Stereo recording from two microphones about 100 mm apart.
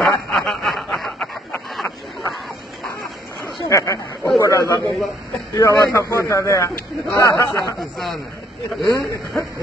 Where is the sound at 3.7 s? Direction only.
30° left (ahead or behind).